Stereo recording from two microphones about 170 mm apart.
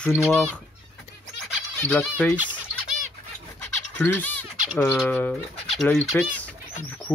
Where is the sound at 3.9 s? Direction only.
10° left (ahead or behind).